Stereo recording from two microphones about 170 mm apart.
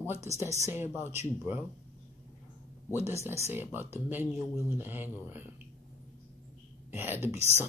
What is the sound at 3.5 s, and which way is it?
Speech, 10° right (ahead or behind).